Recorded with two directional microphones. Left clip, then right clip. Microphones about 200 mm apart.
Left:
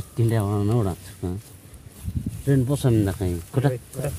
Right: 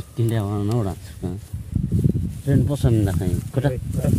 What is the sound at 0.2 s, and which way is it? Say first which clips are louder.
Speech: left 1 dB; 5° left (ahead or behind).